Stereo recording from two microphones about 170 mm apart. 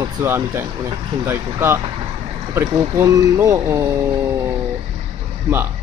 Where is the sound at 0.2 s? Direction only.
15° right (ahead or behind).